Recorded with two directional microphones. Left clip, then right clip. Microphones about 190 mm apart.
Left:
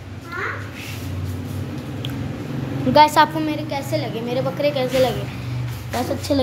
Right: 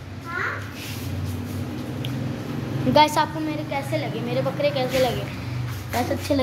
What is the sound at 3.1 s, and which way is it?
Speech, 35° left (ahead or behind).